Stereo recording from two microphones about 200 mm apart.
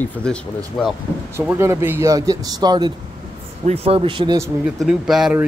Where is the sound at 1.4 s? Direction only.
15° right (ahead or behind).